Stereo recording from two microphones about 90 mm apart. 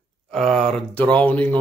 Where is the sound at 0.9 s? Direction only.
15° left (ahead or behind).